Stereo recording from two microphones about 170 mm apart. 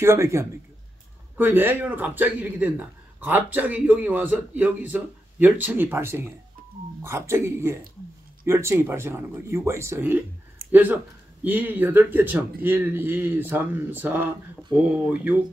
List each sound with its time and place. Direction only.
0.0 s speech: 15° right (ahead or behind)